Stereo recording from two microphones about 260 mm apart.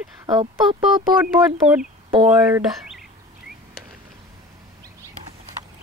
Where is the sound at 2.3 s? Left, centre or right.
Centre.